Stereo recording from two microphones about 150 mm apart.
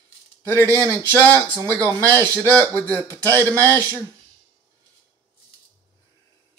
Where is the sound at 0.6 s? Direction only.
20° right (ahead or behind).